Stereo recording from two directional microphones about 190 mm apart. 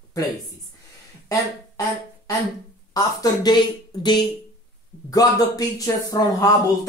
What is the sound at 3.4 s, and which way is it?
Speech, 25° left (ahead or behind).